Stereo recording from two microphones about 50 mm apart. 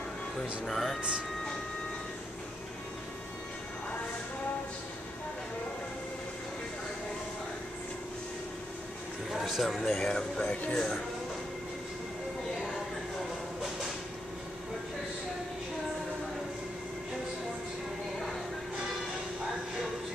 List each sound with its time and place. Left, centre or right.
0.7 s speech: centre
9.3 s speech: centre
10.5 s speech: left
10.8 s speech: centre